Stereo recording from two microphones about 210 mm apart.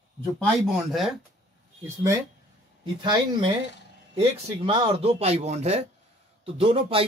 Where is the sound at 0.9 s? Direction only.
Centre (ahead or behind).